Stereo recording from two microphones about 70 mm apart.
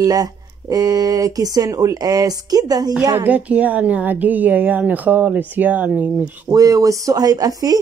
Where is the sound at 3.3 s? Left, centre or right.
Right.